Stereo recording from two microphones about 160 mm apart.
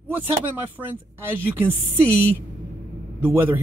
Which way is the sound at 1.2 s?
15° right (ahead or behind).